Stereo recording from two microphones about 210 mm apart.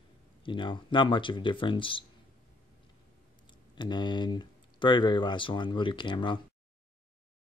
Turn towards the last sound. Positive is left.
turn(degrees=20)  # may be behind; listen again after turning